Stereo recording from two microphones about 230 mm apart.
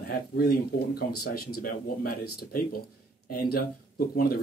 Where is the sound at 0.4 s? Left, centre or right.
Left.